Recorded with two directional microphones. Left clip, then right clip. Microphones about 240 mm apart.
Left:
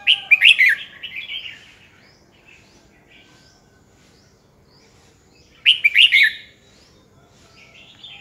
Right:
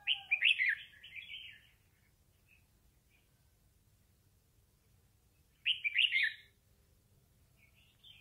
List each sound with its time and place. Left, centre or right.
0.0 s bird: centre
5.6 s chirp: centre